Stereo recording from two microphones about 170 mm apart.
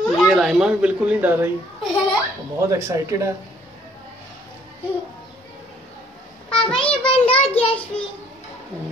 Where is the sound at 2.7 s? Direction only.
15° right (ahead or behind).